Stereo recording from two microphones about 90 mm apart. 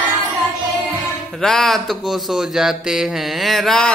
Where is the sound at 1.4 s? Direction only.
5° left (ahead or behind).